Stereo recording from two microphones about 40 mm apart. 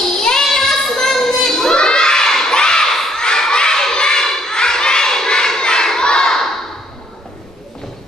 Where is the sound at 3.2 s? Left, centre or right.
Centre.